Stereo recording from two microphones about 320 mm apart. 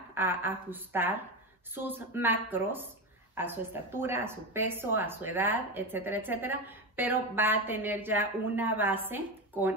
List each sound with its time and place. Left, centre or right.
0.1 s speech: centre